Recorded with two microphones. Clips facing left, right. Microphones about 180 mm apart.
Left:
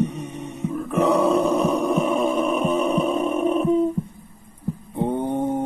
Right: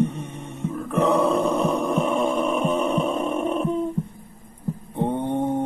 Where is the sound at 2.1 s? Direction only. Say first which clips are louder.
Left 1 dB; 5° left (ahead or behind).